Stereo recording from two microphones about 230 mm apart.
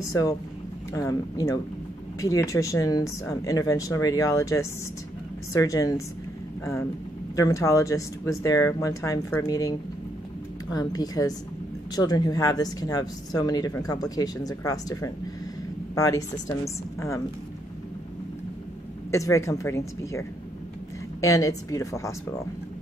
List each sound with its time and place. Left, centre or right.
0.1 s speech: centre
7.3 s speech: centre
19.0 s speech: centre